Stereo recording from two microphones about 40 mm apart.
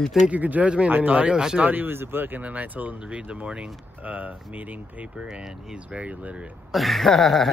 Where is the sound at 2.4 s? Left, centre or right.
Right.